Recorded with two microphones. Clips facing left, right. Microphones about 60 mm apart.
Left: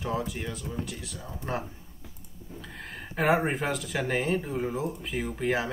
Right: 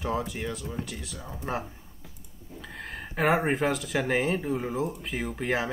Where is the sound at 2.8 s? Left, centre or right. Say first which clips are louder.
Right 2 dB; centre.